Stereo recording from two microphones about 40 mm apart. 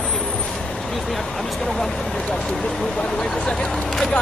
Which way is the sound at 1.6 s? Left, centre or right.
Centre.